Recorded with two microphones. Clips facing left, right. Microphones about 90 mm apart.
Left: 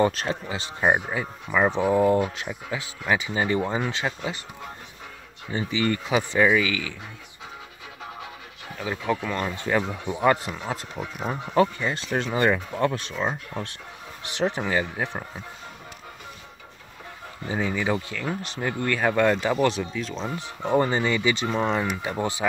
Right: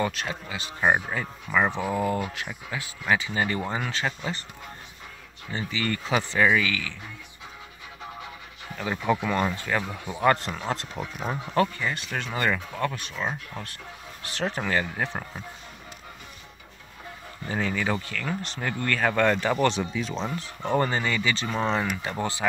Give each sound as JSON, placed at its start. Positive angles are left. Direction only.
{"t": 0.0, "sound": "speech", "side_deg": 35}
{"t": 0.7, "sound": "speech", "side_deg": 10}
{"t": 5.5, "sound": "speech", "side_deg": 20}
{"t": 8.7, "sound": "speech", "side_deg": 0}
{"t": 9.5, "sound": "speech", "side_deg": 20}
{"t": 11.4, "sound": "speech", "side_deg": 20}
{"t": 12.8, "sound": "speech", "side_deg": 30}
{"t": 17.5, "sound": "speech", "side_deg": 15}
{"t": 20.2, "sound": "speech", "side_deg": 15}